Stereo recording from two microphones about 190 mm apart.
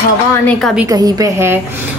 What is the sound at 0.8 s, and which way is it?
Speech, 20° right (ahead or behind).